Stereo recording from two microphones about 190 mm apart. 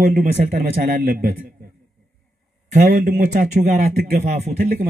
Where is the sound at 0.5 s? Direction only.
50° right (ahead or behind).